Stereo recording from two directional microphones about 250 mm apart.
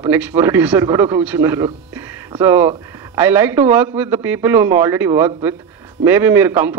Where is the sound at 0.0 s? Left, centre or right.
Centre.